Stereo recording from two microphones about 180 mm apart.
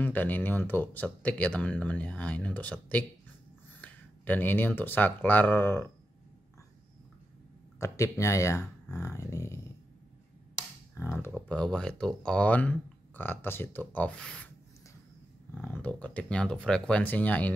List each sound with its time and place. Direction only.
0.0 s speech: 10° left (ahead or behind)
7.8 s speech: 15° left (ahead or behind)
11.0 s speech: 10° left (ahead or behind)
15.5 s speech: 10° left (ahead or behind)